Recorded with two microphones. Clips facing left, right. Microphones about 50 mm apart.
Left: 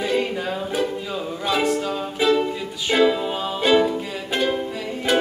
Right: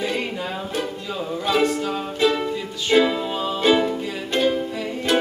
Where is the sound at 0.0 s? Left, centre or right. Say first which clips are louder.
Left 3 dB; centre.